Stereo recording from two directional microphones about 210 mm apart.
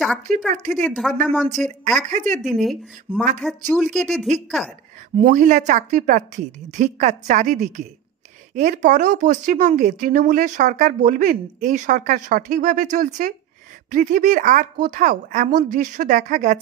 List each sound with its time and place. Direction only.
0.0 s speech: centre (ahead or behind)
0.6 s speech: 35° right (ahead or behind)
0.8 s speech: centre (ahead or behind)
2.0 s speech: 35° right (ahead or behind)
2.4 s speech: centre (ahead or behind)
5.1 s speech: 35° right (ahead or behind)